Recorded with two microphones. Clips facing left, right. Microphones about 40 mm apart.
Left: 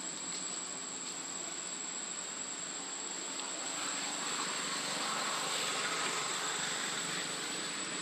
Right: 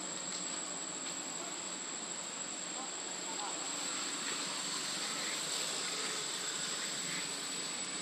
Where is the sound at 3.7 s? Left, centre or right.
Centre; by 7.0 s left.